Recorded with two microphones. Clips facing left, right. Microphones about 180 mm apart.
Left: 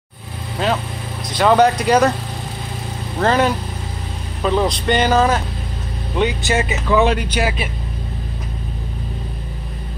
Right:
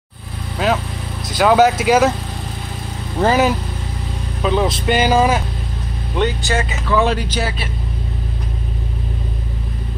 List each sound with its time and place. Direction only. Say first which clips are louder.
0.6 s vehicle: right 2 dB; 5° right (ahead or behind)
1.3 s speech: right 1 dB; 5° right (ahead or behind)
3.2 s speech: right 1 dB; 5° right (ahead or behind)
6.4 s speech: left 2 dB; 20° left (ahead or behind)